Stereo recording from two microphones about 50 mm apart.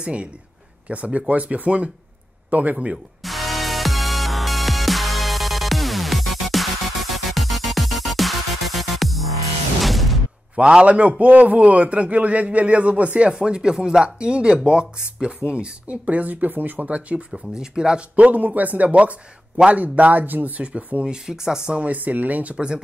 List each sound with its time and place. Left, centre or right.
0.0 s a man's voice: right
3.3 s music: centre
9.8 s a sound: centre
10.5 s a man's voice: centre; by 16.8 s right
16.8 s a man's voice: right
17.3 s speech: centre
18.1 s a man's voice: right
20.6 s speech: right
21.7 s a man's voice: right